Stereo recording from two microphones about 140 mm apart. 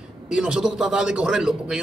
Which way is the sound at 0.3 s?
5° right (ahead or behind).